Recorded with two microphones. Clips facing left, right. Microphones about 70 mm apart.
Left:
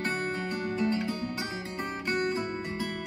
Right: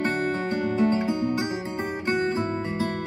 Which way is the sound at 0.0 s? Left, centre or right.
Right.